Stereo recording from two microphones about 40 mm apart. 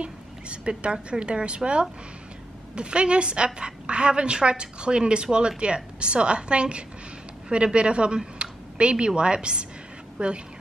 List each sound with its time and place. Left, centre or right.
0.0 s a woman's voice: right